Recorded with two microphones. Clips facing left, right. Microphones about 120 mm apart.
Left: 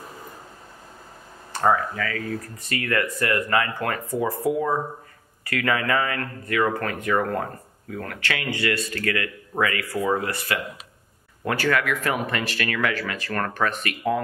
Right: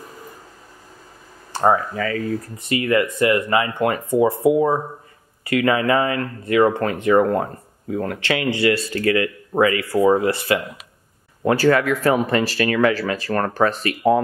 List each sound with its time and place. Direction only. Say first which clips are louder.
1.5 s speech: right 3 dB; 25° right (ahead or behind)